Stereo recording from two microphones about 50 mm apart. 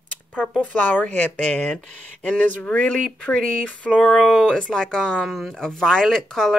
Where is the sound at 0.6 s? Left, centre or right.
Left.